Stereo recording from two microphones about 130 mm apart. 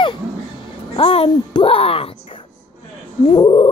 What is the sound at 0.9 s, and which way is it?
Speech, 45° left (ahead or behind).